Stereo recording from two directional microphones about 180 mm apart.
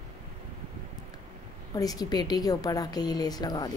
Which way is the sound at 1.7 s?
20° left (ahead or behind).